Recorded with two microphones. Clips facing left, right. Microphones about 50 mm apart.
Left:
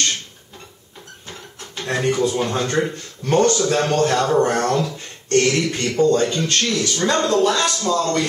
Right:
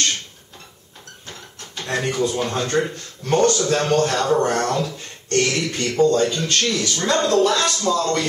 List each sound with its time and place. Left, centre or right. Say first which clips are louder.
1.8 s a man's voice: left 2 dB; centre
4.4 s speech: left 2 dB; centre
6.4 s a man's voice: left 1 dB; centre